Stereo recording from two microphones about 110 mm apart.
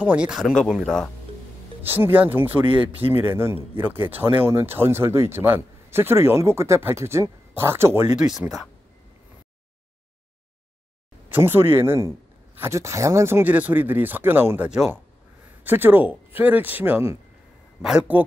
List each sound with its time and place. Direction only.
0.0 s speech: 10° right (ahead or behind)
1.8 s speech: 20° right (ahead or behind)
8.2 s speech: 5° right (ahead or behind)
11.2 s speech: 20° right (ahead or behind)
17.8 s speech: 5° right (ahead or behind)